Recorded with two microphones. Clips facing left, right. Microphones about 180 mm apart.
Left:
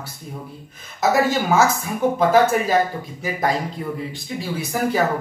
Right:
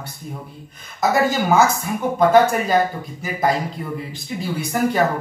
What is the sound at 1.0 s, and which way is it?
Speech, centre (ahead or behind).